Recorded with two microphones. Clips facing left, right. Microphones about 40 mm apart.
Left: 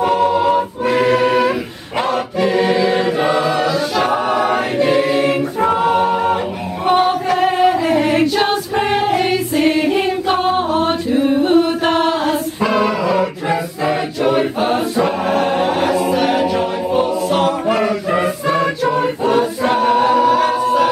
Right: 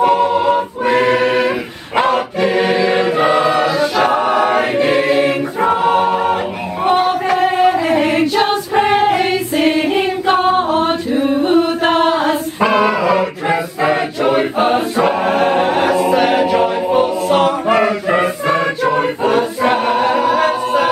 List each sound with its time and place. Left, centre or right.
0.0 s choir: centre
9.6 s singing: centre
11.5 s chant: centre
12.5 s chant: right
16.1 s a capella: centre
17.6 s choir: right